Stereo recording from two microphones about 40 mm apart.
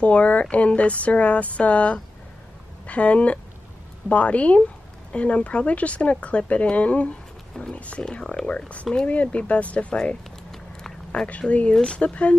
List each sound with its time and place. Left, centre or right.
0.0 s speech: left
11.2 s speech: left